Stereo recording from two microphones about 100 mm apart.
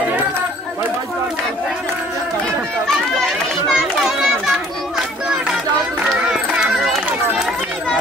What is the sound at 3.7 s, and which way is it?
Children playing, 5° right (ahead or behind).